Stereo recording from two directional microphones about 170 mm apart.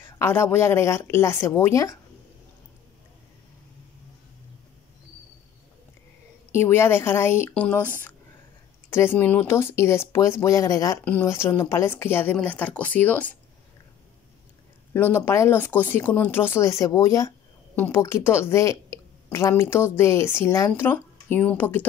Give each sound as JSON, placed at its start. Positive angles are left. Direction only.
{"t": 0.0, "sound": "a woman's voice", "side_deg": 15}
{"t": 6.5, "sound": "a woman's voice", "side_deg": 15}
{"t": 8.9, "sound": "a woman's voice", "side_deg": 15}
{"t": 15.0, "sound": "a woman's voice", "side_deg": 15}